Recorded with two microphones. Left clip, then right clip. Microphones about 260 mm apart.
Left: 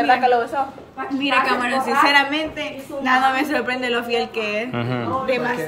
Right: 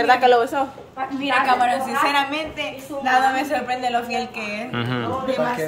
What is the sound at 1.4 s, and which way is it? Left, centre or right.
A woman's voice, centre.